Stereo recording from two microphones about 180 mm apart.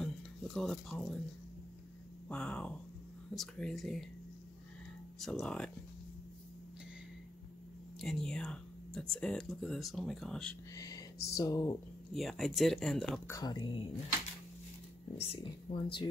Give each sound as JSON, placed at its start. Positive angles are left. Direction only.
{"t": 0.0, "sound": "speech", "side_deg": 0}
{"t": 2.2, "sound": "speech", "side_deg": 5}
{"t": 5.2, "sound": "speech", "side_deg": 0}
{"t": 8.0, "sound": "speech", "side_deg": 0}
{"t": 10.7, "sound": "speech", "side_deg": 20}
{"t": 12.1, "sound": "speech", "side_deg": 0}
{"t": 13.3, "sound": "speech", "side_deg": 20}
{"t": 15.1, "sound": "speech", "side_deg": 30}